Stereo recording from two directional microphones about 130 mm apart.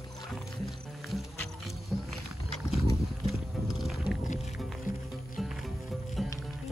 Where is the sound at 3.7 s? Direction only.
Centre (ahead or behind).